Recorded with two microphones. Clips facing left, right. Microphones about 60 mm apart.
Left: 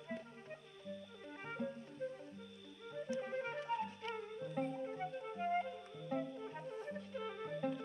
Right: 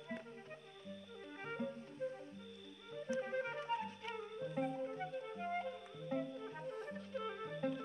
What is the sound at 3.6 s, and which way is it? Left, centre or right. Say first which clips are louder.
Music: left 1 dB; centre.